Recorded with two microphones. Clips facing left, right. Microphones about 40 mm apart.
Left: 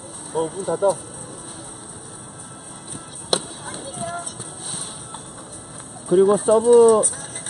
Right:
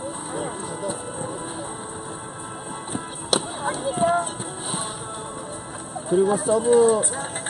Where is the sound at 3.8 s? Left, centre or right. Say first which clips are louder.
Right 10 dB; right.